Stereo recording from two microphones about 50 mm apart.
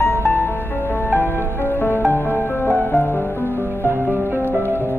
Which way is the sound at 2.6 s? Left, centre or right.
Centre.